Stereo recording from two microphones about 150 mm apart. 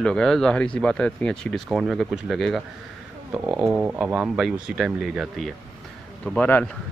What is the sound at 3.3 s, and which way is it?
A man's voice, 10° right (ahead or behind).